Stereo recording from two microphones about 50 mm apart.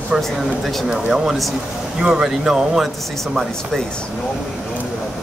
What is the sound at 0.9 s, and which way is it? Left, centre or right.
Speech, centre.